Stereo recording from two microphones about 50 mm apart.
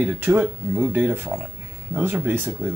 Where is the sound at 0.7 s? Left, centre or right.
Right.